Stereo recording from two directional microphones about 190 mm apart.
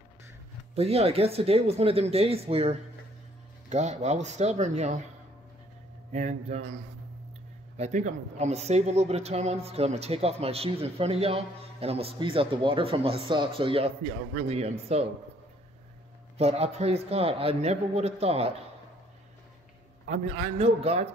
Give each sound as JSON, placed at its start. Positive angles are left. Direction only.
{"t": 0.7, "sound": "a man's voice", "side_deg": -30}
{"t": 6.1, "sound": "a man's voice", "side_deg": -35}
{"t": 7.7, "sound": "a man's voice", "side_deg": -35}
{"t": 16.3, "sound": "a man's voice", "side_deg": -35}
{"t": 20.1, "sound": "a man's voice", "side_deg": -30}